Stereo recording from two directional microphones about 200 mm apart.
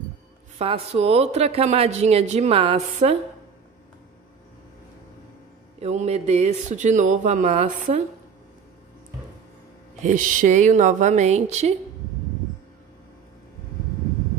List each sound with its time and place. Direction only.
0.6 s a woman's voice: 30° right (ahead or behind)
5.8 s a woman's voice: 35° right (ahead or behind)
10.0 s a woman's voice: 40° right (ahead or behind)